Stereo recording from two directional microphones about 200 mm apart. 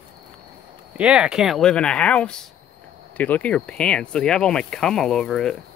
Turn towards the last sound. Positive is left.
turn(degrees=5)  # may be behind; listen again after turning